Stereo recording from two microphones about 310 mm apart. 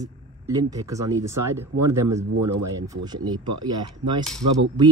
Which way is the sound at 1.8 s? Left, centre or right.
Right.